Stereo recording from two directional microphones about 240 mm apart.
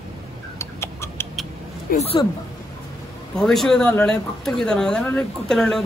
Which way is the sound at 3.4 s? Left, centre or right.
Centre.